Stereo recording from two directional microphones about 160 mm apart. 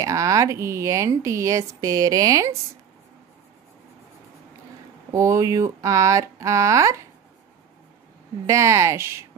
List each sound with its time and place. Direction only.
0.0 s speech: 20° right (ahead or behind)
5.1 s speech: 20° right (ahead or behind)
8.5 s speech: 20° right (ahead or behind)